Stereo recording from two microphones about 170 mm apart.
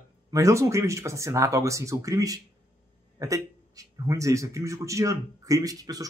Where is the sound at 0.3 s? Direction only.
20° right (ahead or behind).